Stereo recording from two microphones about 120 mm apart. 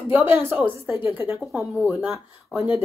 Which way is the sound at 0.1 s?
20° right (ahead or behind).